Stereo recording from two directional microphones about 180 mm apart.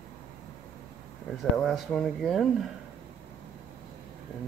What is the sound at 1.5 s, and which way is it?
Speech, centre (ahead or behind).